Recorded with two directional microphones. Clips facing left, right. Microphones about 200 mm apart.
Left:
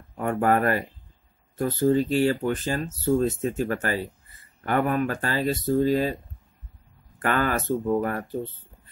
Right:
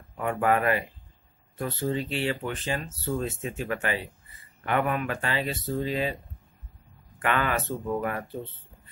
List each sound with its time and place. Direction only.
0.2 s speech: 40° left (ahead or behind)
7.2 s speech: 40° left (ahead or behind)